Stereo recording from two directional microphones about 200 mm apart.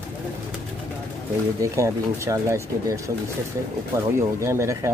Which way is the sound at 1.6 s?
15° right (ahead or behind).